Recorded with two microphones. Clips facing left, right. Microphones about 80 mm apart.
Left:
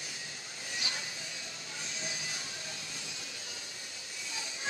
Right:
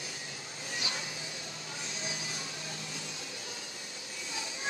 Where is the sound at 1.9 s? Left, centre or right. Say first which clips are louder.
Right 1 dB; right.